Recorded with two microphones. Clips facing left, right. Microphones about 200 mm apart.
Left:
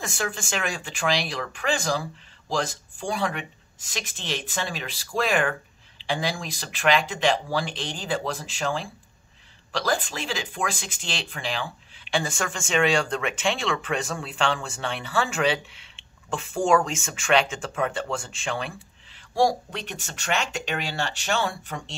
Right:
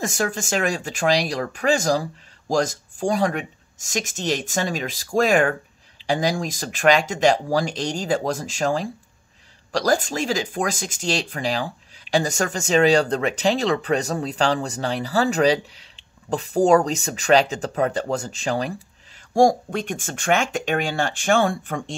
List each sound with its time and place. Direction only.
0.0 s speech: 40° right (ahead or behind)